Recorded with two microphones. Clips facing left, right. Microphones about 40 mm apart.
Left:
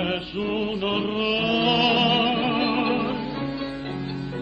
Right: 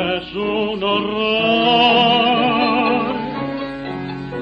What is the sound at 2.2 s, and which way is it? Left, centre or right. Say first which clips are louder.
Music: right 7 dB; right.